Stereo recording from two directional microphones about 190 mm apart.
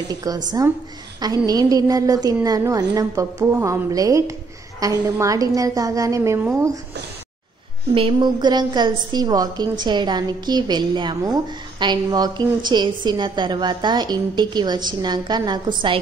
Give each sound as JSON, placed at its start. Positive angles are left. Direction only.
{"t": 0.1, "sound": "a woman's voice", "side_deg": -20}
{"t": 7.9, "sound": "a woman's voice", "side_deg": -25}